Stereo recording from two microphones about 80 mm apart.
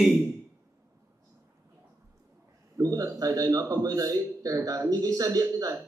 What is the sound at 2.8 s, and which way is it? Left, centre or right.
A man's voice, right.